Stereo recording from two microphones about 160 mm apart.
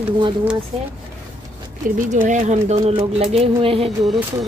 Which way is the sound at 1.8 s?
55° right (ahead or behind).